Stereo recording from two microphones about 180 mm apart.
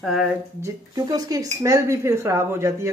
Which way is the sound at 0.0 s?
Centre (ahead or behind).